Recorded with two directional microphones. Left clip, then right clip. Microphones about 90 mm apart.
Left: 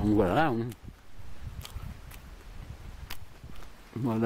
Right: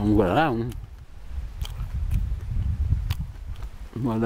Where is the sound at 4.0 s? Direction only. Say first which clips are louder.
Right 4 dB; 5° left (ahead or behind).